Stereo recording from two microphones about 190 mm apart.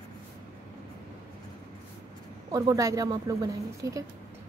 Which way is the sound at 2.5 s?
20° right (ahead or behind).